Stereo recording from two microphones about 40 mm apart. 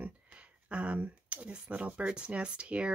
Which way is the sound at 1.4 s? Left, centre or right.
Right.